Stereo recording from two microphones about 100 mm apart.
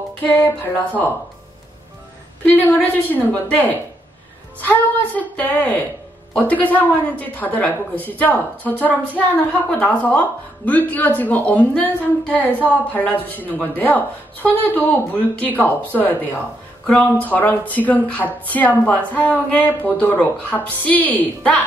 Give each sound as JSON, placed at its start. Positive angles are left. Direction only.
{"t": 0.2, "sound": "music", "side_deg": 20}
{"t": 2.4, "sound": "speech", "side_deg": 15}